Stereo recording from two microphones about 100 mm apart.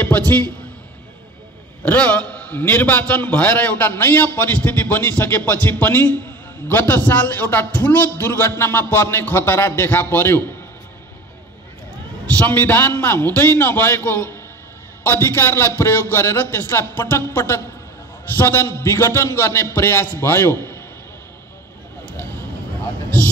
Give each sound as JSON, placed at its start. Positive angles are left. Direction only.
{"t": 0.3, "sound": "a man's voice", "side_deg": 25}
{"t": 1.9, "sound": "a man's voice", "side_deg": 15}
{"t": 12.3, "sound": "a man's voice", "side_deg": 20}